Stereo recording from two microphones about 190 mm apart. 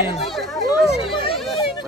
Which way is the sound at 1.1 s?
30° left (ahead or behind).